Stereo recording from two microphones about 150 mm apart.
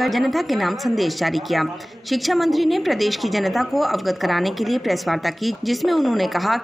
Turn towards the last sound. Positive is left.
turn(degrees=0)  # may be behind; listen again after turning